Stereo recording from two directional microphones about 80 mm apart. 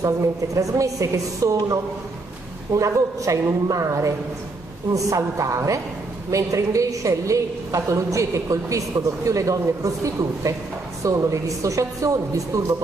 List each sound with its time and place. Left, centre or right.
0.0 s a woman's voice: right